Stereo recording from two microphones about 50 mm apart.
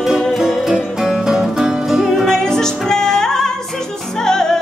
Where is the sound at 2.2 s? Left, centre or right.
Centre.